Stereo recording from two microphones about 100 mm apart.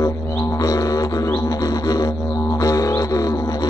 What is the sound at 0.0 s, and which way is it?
Music, 35° left (ahead or behind).